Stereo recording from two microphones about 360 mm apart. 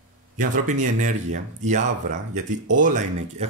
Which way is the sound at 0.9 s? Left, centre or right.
Centre.